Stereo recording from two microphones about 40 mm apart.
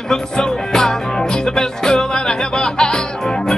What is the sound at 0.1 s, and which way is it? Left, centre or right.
Music, centre.